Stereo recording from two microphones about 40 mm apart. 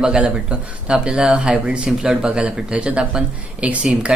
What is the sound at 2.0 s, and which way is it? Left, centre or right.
Speech, centre.